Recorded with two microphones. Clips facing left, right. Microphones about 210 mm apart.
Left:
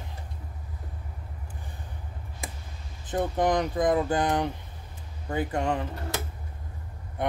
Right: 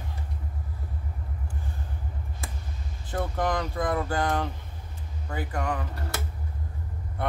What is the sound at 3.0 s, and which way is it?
Speech, 20° left (ahead or behind).